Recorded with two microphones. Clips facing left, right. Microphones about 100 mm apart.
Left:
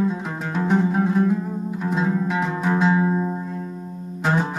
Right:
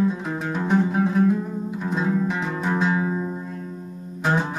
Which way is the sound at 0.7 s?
15° left (ahead or behind).